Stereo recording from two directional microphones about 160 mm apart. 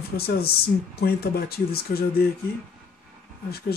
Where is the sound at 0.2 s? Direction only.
75° left (ahead or behind).